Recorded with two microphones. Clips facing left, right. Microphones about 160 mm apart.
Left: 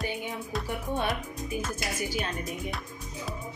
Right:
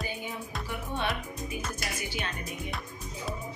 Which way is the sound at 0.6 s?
45° left (ahead or behind).